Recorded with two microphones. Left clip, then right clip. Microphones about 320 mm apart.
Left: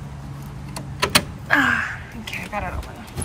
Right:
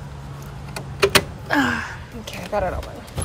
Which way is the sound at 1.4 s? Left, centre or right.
Centre.